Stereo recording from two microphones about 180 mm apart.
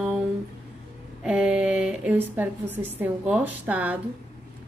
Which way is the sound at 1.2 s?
5° right (ahead or behind).